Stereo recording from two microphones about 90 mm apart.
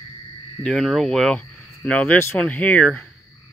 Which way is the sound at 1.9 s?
15° left (ahead or behind).